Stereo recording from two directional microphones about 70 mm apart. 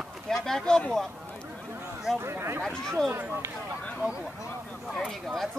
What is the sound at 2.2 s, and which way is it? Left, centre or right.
Speech, right.